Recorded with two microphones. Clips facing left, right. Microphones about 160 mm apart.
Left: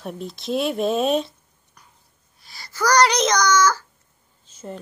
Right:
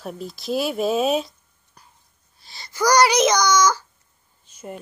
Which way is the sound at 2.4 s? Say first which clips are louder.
Right 2 dB; 25° right (ahead or behind).